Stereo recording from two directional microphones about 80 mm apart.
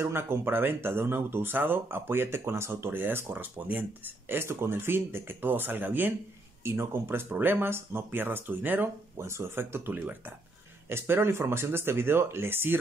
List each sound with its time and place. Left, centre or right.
0.0 s speech: right